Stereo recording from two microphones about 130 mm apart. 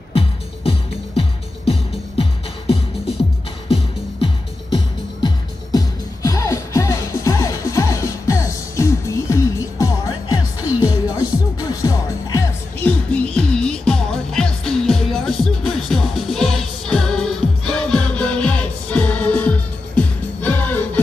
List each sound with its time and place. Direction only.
0.1 s music: 45° left (ahead or behind)
5.2 s music: 30° left (ahead or behind)
12.8 s music: 10° left (ahead or behind)